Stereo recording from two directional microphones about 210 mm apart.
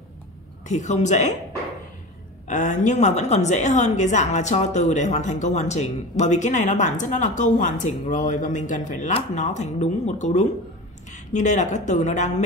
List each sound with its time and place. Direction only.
0.7 s a woman's voice: 35° left (ahead or behind)
2.4 s a woman's voice: 35° left (ahead or behind)